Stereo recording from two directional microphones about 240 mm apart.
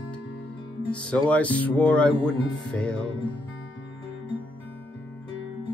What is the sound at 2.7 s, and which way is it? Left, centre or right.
Music, centre.